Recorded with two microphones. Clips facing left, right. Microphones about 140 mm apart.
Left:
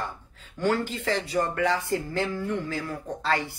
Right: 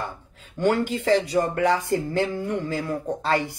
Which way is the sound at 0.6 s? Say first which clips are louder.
Right 4 dB; 20° right (ahead or behind).